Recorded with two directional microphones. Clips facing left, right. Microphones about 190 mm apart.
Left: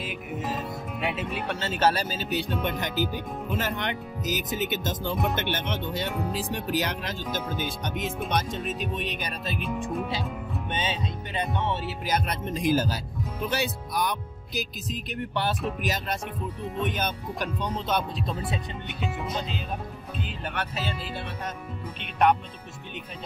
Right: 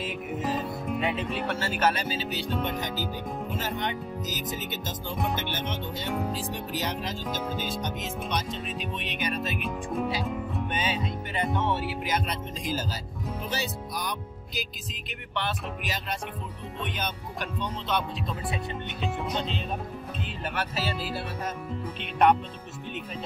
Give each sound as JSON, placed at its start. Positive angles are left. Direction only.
{"t": 0.0, "sound": "speech", "side_deg": 0}
{"t": 1.3, "sound": "speech", "side_deg": 20}
{"t": 8.3, "sound": "speech", "side_deg": 50}
{"t": 9.6, "sound": "speech", "side_deg": 5}
{"t": 10.7, "sound": "speech", "side_deg": 25}
{"t": 12.1, "sound": "speech", "side_deg": 55}
{"t": 15.8, "sound": "speech", "side_deg": 45}
{"t": 18.9, "sound": "speech", "side_deg": 5}
{"t": 22.2, "sound": "speech", "side_deg": 0}